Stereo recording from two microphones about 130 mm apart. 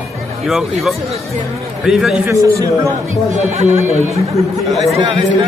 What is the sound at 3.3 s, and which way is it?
Speech, 60° right (ahead or behind).